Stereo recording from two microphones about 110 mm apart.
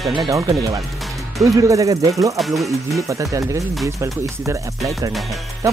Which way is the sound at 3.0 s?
30° right (ahead or behind).